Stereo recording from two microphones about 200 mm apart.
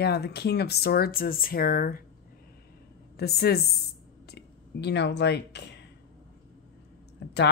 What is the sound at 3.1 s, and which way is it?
Speech, 50° left (ahead or behind).